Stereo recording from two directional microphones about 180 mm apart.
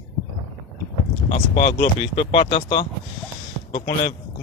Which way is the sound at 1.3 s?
35° left (ahead or behind).